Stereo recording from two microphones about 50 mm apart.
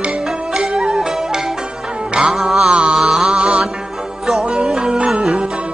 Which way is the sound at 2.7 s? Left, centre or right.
Right.